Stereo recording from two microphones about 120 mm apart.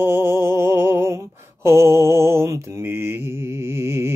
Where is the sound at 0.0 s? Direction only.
20° right (ahead or behind).